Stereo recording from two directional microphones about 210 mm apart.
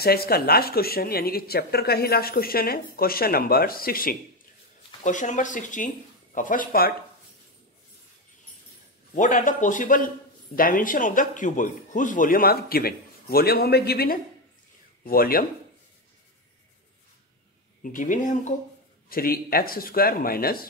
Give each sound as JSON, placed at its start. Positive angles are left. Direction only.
{"t": 0.0, "sound": "a man's voice", "side_deg": 45}
{"t": 9.1, "sound": "a man's voice", "side_deg": 35}
{"t": 17.8, "sound": "a man's voice", "side_deg": 40}